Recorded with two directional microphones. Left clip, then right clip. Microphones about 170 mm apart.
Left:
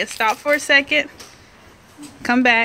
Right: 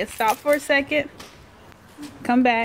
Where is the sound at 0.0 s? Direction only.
5° right (ahead or behind).